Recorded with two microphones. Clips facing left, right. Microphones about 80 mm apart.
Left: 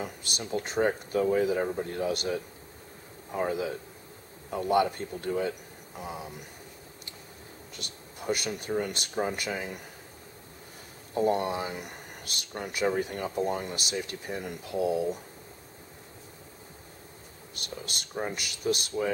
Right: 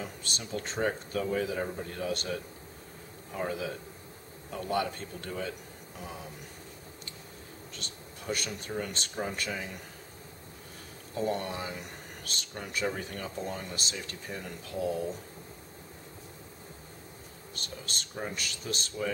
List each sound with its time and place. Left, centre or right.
0.0 s speech: centre
7.7 s speech: centre
11.1 s speech: centre
12.7 s speech: centre
17.6 s speech: centre